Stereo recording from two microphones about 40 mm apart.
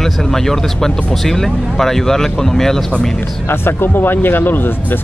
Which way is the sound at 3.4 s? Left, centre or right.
Left.